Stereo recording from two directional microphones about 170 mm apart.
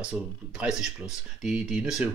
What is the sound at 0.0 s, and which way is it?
Speech, 5° right (ahead or behind).